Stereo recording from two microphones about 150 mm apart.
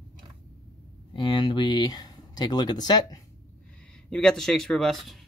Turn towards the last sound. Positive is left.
turn(degrees=0)  # may be behind; listen again after turning